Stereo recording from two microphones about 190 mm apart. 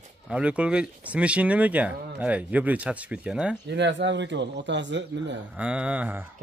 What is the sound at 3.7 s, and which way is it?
A man's voice, 65° right (ahead or behind).